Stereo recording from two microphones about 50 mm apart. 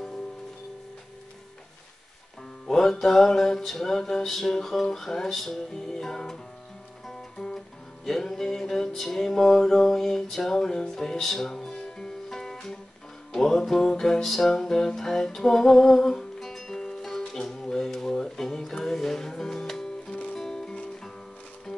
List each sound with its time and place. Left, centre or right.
2.6 s music: centre
20.1 s music: left
20.3 s music: centre